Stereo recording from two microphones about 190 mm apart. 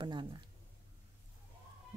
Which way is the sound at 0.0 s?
25° right (ahead or behind).